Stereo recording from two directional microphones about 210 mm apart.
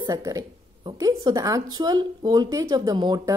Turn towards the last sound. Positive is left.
turn(degrees=-20)  # may be behind; listen again after turning